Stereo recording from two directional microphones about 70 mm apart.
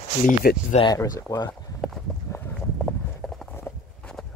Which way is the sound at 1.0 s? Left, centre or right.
Left.